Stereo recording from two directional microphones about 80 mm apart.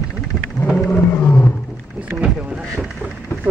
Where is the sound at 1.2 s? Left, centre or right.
Centre.